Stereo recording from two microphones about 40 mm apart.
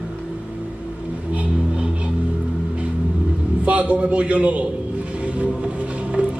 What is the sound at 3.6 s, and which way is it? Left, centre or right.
A man's voice, right.